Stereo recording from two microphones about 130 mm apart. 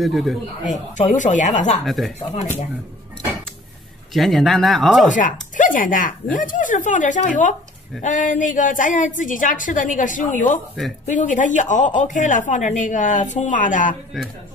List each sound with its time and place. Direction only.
0.0 s speech: centre (ahead or behind)
0.7 s a woman's voice: 70° left (ahead or behind)
1.9 s speech: centre (ahead or behind)
4.1 s speech: centre (ahead or behind)
5.1 s a woman's voice: 85° left
14.1 s speech: centre (ahead or behind)